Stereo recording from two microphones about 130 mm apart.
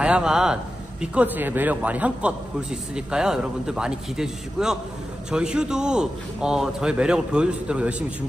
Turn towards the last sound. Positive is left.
turn(degrees=-10)  # may be behind; listen again after turning